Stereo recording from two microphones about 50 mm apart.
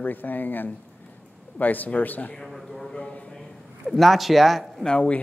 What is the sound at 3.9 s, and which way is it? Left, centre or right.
Speech, centre.